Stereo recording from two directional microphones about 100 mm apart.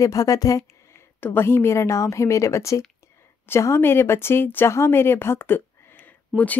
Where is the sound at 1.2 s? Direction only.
20° left (ahead or behind).